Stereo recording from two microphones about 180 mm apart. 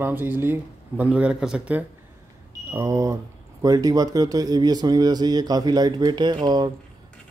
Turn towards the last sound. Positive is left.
turn(degrees=-20)  # may be behind; listen again after turning